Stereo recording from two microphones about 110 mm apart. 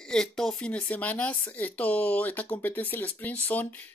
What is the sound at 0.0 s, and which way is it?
Speech, 5° left (ahead or behind).